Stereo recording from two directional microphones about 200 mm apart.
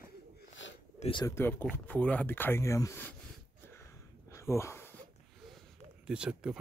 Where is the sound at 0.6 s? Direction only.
65° left (ahead or behind).